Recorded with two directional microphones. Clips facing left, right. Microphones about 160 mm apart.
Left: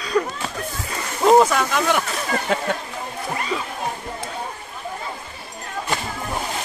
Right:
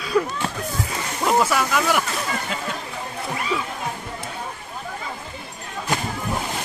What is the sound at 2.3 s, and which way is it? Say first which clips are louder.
Speech: left 6 dB; 55° left (ahead or behind).